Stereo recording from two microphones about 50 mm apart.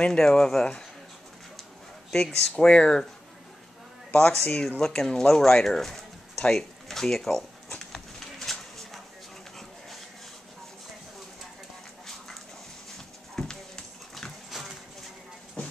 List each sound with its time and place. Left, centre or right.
0.0 s speech: centre
2.5 s speech: centre
4.2 s speech: centre
7.8 s a sound: centre
12.9 s horse: centre
14.1 s dog: centre